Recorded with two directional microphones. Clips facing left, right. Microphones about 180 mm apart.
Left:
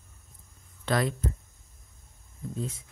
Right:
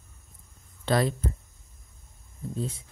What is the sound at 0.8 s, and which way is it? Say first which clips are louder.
Speech: right 3 dB; 30° right (ahead or behind).